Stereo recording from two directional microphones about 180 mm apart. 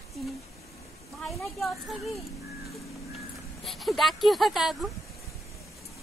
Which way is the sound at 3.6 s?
Centre (ahead or behind).